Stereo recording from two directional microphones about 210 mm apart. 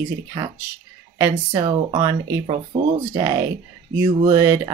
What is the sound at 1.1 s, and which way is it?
Speech, 15° right (ahead or behind).